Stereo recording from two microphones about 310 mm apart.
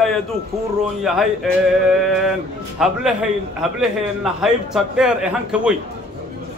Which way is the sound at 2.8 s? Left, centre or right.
Centre.